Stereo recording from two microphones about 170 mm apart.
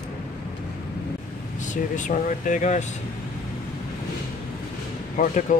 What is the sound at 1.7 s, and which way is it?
Speech, 45° left (ahead or behind).